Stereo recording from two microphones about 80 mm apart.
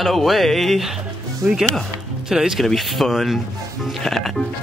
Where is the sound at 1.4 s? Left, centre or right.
Right.